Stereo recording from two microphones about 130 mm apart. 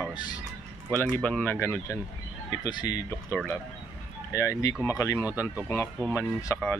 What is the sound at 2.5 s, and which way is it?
Speech, 30° left (ahead or behind).